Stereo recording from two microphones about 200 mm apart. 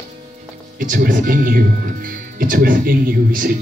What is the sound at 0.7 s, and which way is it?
Speech, 45° right (ahead or behind).